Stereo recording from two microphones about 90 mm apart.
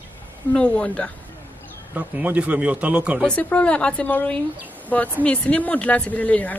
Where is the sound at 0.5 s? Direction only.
10° left (ahead or behind).